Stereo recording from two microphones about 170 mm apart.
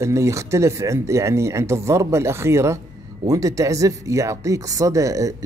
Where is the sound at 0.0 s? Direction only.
15° right (ahead or behind).